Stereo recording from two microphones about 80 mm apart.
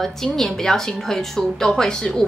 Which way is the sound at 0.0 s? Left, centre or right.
Centre.